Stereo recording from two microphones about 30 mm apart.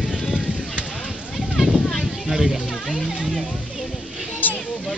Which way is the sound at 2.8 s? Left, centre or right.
Centre.